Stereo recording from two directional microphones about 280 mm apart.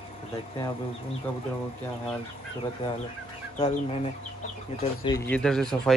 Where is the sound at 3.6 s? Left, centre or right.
Centre.